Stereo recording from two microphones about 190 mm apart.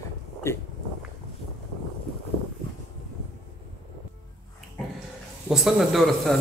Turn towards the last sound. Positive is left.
turn(degrees=0)  # may be behind; listen again after turning